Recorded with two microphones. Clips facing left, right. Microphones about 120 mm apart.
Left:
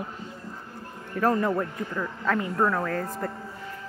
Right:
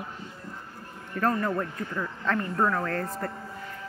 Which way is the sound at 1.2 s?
10° left (ahead or behind).